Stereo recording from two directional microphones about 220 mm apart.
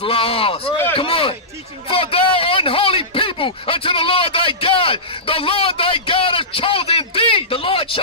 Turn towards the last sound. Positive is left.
turn(degrees=25)  # may be behind; listen again after turning